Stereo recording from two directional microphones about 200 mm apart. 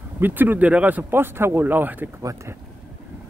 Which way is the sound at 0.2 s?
10° right (ahead or behind).